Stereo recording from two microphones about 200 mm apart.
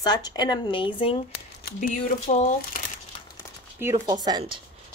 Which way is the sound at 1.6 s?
45° left (ahead or behind).